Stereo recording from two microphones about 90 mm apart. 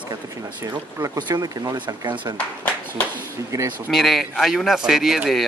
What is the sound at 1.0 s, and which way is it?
Speech, 40° right (ahead or behind).